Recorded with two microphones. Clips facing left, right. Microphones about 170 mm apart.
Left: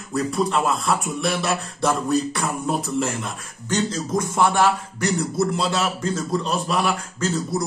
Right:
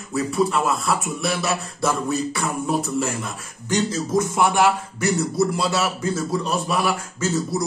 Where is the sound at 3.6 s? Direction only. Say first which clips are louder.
Right 1 dB; 10° right (ahead or behind).